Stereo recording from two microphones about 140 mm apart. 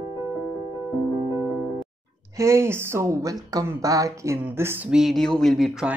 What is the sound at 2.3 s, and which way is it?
Speech, 20° right (ahead or behind).